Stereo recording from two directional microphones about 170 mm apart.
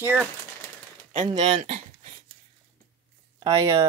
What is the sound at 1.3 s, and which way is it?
Speech, 35° right (ahead or behind).